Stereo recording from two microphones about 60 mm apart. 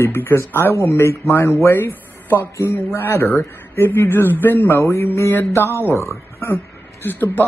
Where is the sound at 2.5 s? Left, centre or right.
Left.